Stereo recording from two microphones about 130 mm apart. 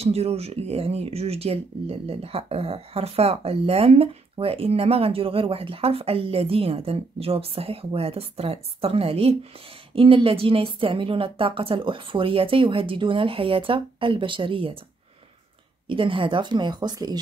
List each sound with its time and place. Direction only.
0.0 s speech: 50° right (ahead or behind)
15.9 s speech: 40° right (ahead or behind)